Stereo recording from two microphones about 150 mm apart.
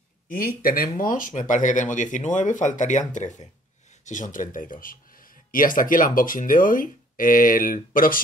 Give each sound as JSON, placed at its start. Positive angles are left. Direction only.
{"t": 0.3, "sound": "speech", "side_deg": 75}